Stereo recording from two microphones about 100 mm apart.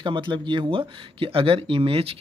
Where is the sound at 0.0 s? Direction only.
55° right (ahead or behind).